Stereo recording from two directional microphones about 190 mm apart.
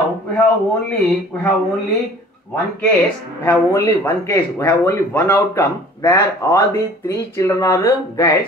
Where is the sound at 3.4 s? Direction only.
15° left (ahead or behind).